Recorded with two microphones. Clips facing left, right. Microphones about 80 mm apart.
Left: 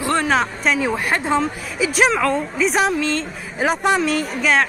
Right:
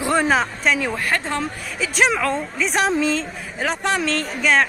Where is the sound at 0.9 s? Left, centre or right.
Centre.